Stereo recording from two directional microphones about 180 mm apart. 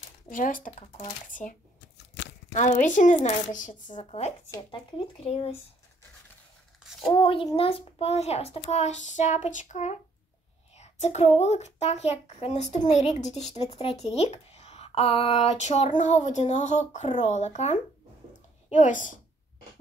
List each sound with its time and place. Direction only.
0.3 s speech: 50° left (ahead or behind)
2.5 s speech: 40° left (ahead or behind)
7.1 s speech: 30° left (ahead or behind); by 19.1 s 45° left (ahead or behind)